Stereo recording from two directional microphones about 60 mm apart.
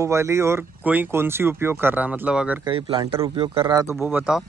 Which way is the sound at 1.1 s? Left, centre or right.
Right.